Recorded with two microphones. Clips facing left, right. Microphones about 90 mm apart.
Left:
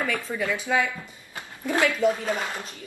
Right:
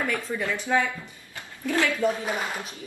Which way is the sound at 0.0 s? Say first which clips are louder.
Even; centre (ahead or behind).